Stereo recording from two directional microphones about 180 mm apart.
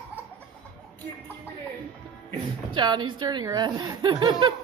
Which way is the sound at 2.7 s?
25° right (ahead or behind).